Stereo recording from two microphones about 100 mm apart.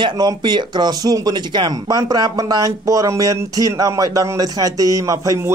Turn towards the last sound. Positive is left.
turn(degrees=-35)  # may be behind; listen again after turning